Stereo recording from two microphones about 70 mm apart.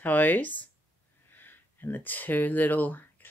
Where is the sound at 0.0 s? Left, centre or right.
Left.